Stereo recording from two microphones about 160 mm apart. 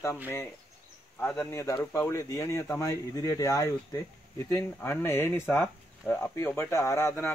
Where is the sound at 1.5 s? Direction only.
20° left (ahead or behind).